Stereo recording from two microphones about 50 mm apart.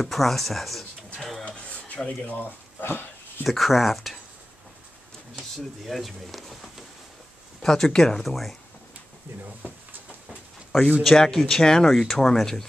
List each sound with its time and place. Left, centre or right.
0.0 s speech: centre
1.4 s a sound: left
2.0 s speech: left
2.4 s a sound: left
3.4 s speech: centre
5.9 s speech: centre
7.6 s speech: centre
8.2 s speech: centre
11.0 s speech: centre